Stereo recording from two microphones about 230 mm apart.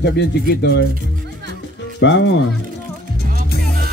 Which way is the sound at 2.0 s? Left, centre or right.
Left.